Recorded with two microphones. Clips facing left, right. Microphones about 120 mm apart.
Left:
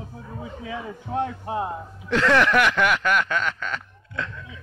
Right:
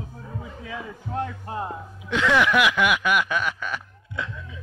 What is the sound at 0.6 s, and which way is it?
A man's voice, 20° left (ahead or behind).